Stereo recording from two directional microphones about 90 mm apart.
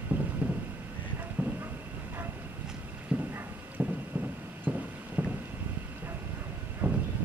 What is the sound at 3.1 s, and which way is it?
Clip-clop, 15° right (ahead or behind).